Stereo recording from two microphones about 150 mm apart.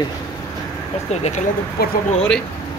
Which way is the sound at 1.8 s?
90° left.